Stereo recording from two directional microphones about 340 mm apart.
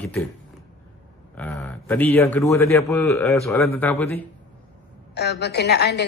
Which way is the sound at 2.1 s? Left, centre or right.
Centre.